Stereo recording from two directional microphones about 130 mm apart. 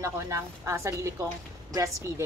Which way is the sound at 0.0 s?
20° right (ahead or behind).